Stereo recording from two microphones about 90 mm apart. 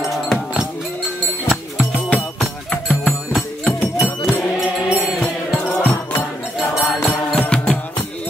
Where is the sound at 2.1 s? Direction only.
10° left (ahead or behind).